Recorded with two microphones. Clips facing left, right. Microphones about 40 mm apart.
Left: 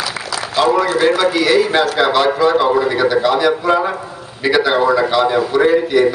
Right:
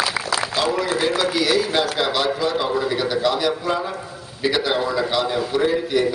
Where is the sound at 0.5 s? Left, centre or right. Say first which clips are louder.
Left 10 dB; left.